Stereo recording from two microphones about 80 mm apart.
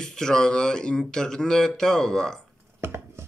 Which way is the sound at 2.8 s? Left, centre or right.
Right.